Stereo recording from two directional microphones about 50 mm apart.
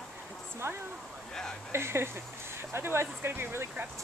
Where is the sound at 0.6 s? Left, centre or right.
Right.